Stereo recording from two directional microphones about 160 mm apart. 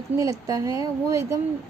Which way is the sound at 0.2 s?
20° right (ahead or behind).